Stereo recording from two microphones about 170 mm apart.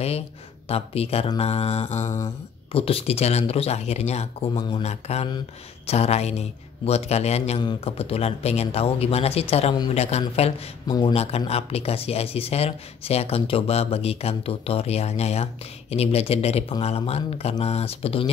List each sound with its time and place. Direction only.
0.7 s speech: 35° left (ahead or behind)
10.9 s speech: 25° left (ahead or behind)
11.1 s speech: 35° left (ahead or behind)